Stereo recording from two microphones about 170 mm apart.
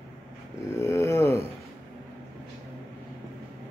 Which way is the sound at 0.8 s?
15° left (ahead or behind).